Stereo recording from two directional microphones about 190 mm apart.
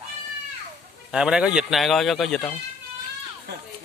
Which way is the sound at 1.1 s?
5° right (ahead or behind).